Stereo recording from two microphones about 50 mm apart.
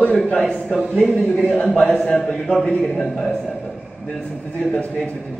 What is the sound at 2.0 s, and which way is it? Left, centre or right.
Speech, centre.